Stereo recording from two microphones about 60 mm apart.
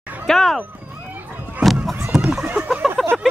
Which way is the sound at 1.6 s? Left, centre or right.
Centre.